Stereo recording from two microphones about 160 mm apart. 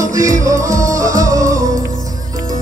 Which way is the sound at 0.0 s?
20° right (ahead or behind).